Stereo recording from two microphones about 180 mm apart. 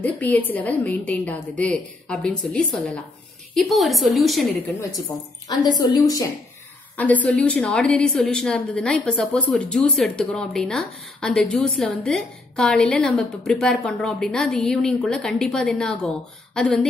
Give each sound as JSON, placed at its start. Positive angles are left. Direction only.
{"t": 0.0, "sound": "a woman's voice", "side_deg": 10}
{"t": 5.6, "sound": "speech", "side_deg": 20}
{"t": 7.0, "sound": "a woman's voice", "side_deg": 10}